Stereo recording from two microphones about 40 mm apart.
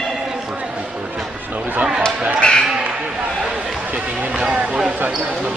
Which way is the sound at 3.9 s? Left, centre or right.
Right.